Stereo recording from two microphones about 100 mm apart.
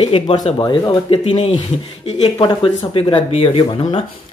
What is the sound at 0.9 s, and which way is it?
Speech, 60° left (ahead or behind).